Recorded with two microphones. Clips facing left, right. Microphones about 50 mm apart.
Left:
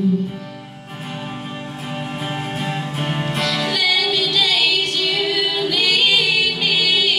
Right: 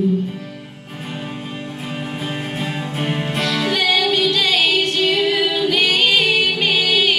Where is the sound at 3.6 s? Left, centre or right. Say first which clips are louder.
Right 3 dB; right.